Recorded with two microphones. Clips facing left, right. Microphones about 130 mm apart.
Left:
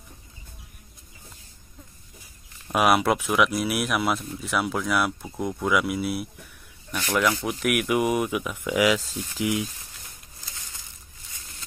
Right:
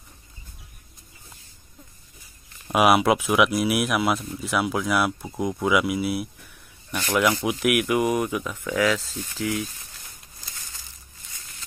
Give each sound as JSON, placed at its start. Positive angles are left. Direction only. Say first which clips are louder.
{"t": 2.7, "sound": "speech", "louder": "right 2 dB", "side_deg": -5}